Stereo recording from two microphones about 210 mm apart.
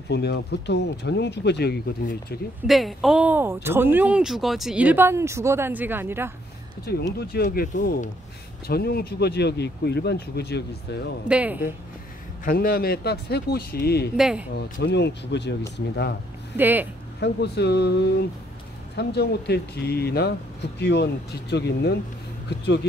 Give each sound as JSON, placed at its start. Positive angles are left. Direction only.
{"t": 0.1, "sound": "speech", "side_deg": 55}
{"t": 2.6, "sound": "speech", "side_deg": 0}
{"t": 7.2, "sound": "speech", "side_deg": 45}
{"t": 11.2, "sound": "speech", "side_deg": -5}
{"t": 12.4, "sound": "speech", "side_deg": 45}
{"t": 14.1, "sound": "speech", "side_deg": -5}
{"t": 14.5, "sound": "speech", "side_deg": 50}
{"t": 16.5, "sound": "speech", "side_deg": -10}
{"t": 17.2, "sound": "speech", "side_deg": 55}